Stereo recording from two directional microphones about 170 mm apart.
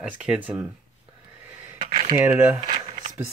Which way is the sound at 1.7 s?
40° right (ahead or behind).